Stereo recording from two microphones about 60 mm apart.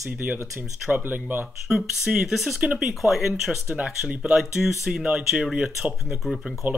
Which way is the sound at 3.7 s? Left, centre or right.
Centre.